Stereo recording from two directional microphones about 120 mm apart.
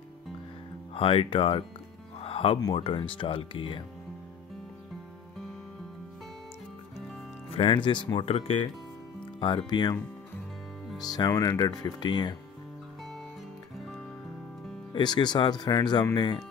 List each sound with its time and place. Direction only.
0.9 s speech: 50° left (ahead or behind)
2.1 s music: 50° left (ahead or behind)
2.7 s speech: 45° left (ahead or behind)
7.5 s speech: 45° left (ahead or behind); by 8.6 s 60° left (ahead or behind)
9.4 s speech: 40° left (ahead or behind)
11.0 s speech: 35° left (ahead or behind)
14.9 s speech: 40° left (ahead or behind)